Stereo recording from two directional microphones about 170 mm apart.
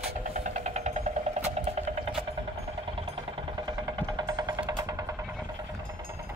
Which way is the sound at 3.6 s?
25° right (ahead or behind).